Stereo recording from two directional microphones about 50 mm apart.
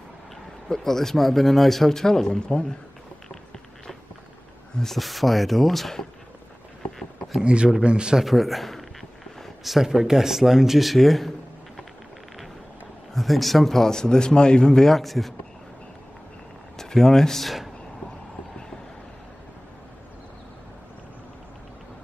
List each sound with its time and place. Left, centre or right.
0.7 s speech: centre
4.7 s speech: centre
6.8 s a sound: centre
7.4 s a man's voice: right
8.2 s speech: centre
13.1 s speech: centre
14.9 s speech: centre
16.7 s speech: centre